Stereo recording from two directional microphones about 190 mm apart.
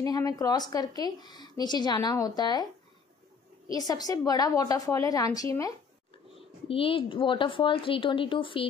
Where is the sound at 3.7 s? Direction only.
20° left (ahead or behind).